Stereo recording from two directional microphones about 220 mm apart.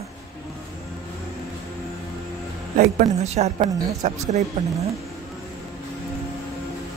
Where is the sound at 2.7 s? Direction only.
30° right (ahead or behind).